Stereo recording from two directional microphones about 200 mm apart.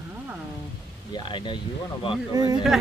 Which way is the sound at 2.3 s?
20° right (ahead or behind).